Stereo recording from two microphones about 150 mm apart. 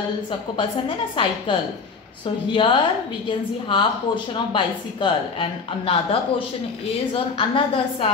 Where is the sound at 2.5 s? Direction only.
35° left (ahead or behind).